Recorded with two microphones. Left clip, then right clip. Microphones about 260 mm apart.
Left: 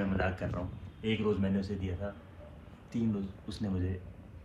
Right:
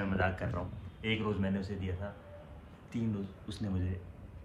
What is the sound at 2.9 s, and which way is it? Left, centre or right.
Speech, centre.